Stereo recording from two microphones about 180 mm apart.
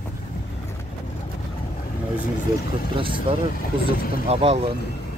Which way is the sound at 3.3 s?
30° right (ahead or behind).